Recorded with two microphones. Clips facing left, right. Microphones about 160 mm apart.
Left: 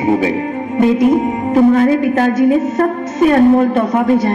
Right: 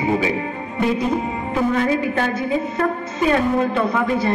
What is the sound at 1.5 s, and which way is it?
Music, 40° left (ahead or behind).